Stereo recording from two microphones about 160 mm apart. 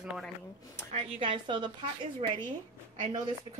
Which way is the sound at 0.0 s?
5° right (ahead or behind).